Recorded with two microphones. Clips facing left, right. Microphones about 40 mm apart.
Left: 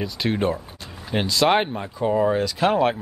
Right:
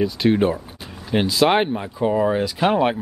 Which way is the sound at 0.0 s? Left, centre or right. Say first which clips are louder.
Right 5 dB; centre.